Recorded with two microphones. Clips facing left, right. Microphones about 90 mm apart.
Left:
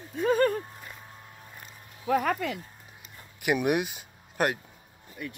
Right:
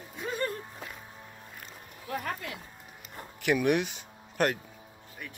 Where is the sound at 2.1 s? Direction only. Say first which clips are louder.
Left 9 dB; 90° left.